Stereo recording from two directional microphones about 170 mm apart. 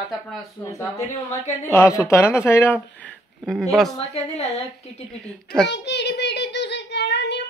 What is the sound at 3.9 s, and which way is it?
Speech, 40° left (ahead or behind).